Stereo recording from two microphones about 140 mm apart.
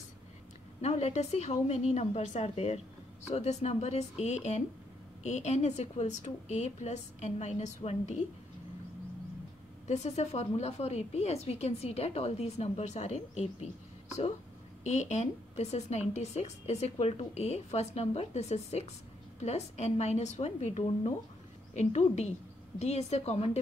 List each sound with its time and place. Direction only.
0.7 s a woman's voice: 50° left (ahead or behind)
9.8 s a woman's voice: 50° left (ahead or behind)
14.8 s a woman's voice: 55° left (ahead or behind)